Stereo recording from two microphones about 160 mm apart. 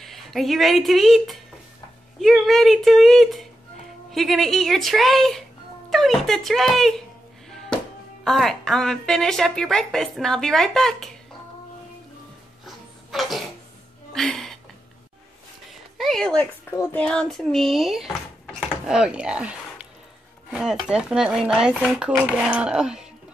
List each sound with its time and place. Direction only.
0.0 s speech: centre (ahead or behind)
12.6 s a sound: centre (ahead or behind)
16.0 s speech: 5° left (ahead or behind)